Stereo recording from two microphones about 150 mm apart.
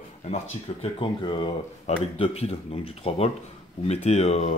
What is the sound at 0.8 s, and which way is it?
Speech, 40° left (ahead or behind).